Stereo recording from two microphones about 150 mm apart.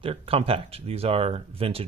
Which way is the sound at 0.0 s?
40° right (ahead or behind).